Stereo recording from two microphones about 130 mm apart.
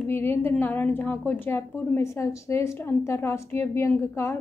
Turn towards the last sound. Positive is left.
turn(degrees=20)  # may be behind; listen again after turning